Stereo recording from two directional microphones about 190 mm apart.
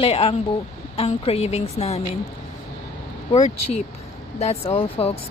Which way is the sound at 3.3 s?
35° left (ahead or behind).